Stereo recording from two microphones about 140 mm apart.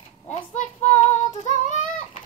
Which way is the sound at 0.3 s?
60° left (ahead or behind).